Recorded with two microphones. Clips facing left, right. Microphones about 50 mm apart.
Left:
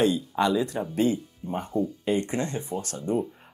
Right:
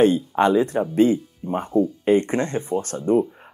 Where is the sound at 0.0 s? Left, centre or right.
Right.